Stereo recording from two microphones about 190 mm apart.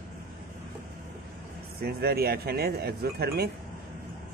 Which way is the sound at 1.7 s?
55° right (ahead or behind).